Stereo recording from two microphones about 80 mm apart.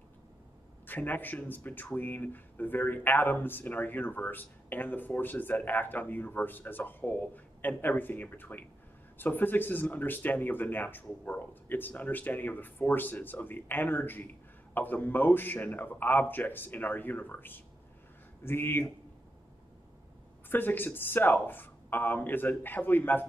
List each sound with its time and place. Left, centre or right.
0.8 s speech: left
20.4 s speech: left